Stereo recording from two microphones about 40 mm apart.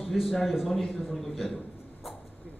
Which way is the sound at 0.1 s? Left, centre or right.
Centre.